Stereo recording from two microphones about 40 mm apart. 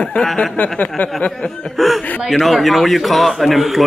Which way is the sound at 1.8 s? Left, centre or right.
Centre.